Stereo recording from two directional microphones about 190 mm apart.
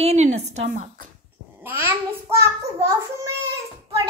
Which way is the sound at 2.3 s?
15° right (ahead or behind).